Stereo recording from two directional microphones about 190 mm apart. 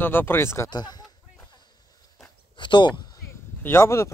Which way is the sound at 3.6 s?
15° left (ahead or behind).